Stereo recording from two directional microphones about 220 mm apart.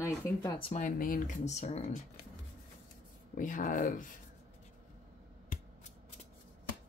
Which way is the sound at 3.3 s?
40° left (ahead or behind).